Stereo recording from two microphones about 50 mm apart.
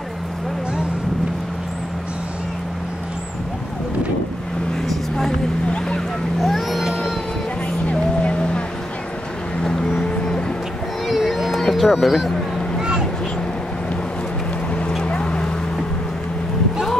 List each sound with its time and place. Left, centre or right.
4.8 s vehicle: centre
5.7 s boat: centre
6.4 s vehicle: centre
7.9 s vehicle: left
9.9 s music: centre
11.1 s a sound: centre
11.6 s speech: centre
15.0 s boat: centre